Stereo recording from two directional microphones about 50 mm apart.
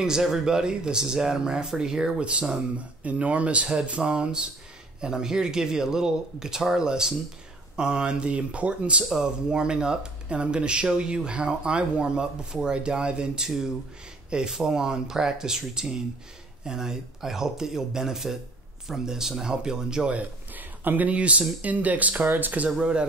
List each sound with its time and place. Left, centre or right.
0.2 s speech: centre
20.1 s speech: right
22.8 s speech: centre